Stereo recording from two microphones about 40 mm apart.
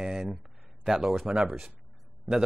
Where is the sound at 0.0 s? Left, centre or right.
Centre.